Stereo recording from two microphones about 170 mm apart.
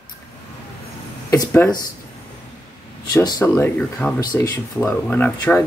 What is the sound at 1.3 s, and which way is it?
Speech, 15° left (ahead or behind).